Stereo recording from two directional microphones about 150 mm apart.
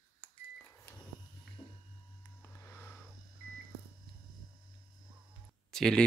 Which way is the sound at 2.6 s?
15° left (ahead or behind).